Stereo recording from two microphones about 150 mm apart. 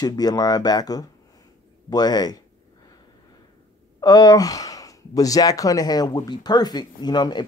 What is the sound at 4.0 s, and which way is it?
Speech, 25° left (ahead or behind).